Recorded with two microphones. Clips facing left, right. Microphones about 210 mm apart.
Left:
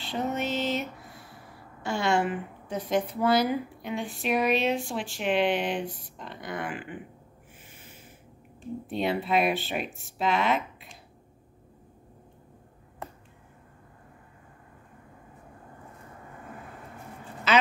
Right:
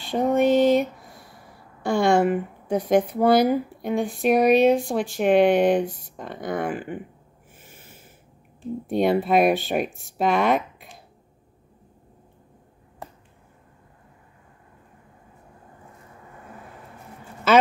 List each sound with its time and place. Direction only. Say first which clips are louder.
0.0 s a sound: right 10 dB; 45° right (ahead or behind)
1.9 s speech: right 7 dB; 50° right (ahead or behind)
7.6 s snort: right 3 dB; 45° right (ahead or behind)
8.8 s speech: right 8 dB; 45° right (ahead or behind)